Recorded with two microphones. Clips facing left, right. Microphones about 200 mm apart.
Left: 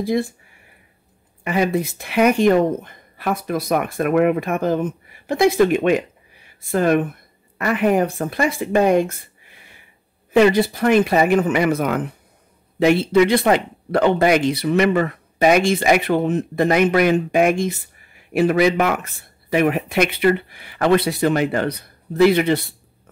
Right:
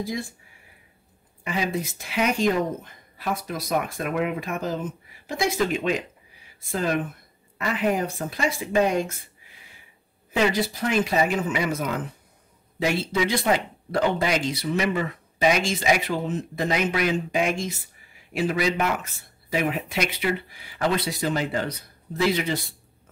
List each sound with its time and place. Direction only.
0.0 s speech: 60° left (ahead or behind)
1.4 s speech: 60° left (ahead or behind)
10.3 s speech: 60° left (ahead or behind)